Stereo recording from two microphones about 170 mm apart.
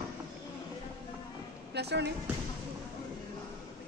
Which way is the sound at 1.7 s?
80° right.